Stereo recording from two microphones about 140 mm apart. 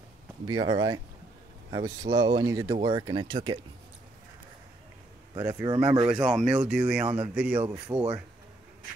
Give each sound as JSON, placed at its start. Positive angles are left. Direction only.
{"t": 0.5, "sound": "speech", "side_deg": -30}
{"t": 5.4, "sound": "speech", "side_deg": -20}
{"t": 7.9, "sound": "speech", "side_deg": -20}